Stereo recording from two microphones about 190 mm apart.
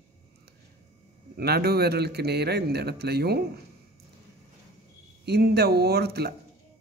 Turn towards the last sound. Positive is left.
turn(degrees=-55)  # may be behind; listen again after turning